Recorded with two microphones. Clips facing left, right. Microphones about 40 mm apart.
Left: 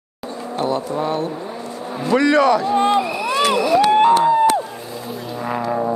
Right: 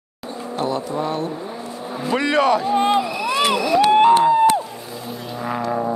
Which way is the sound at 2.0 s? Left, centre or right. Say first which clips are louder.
Left 3 dB; right.